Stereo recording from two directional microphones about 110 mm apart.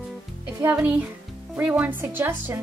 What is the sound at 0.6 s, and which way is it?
A woman's voice, 15° right (ahead or behind).